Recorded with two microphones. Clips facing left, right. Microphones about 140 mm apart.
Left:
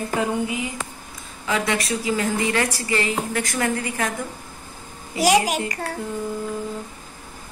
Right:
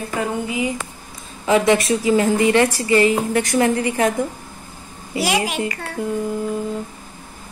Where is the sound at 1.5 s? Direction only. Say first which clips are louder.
Right 8 dB; 25° right (ahead or behind).